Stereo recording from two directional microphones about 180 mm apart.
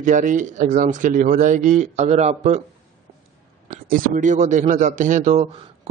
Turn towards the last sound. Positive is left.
turn(degrees=-40)  # may be behind; listen again after turning